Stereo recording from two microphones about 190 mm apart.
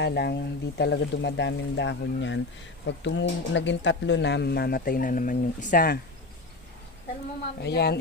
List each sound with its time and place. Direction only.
0.0 s speech: 60° left (ahead or behind)
7.6 s speech: 60° left (ahead or behind)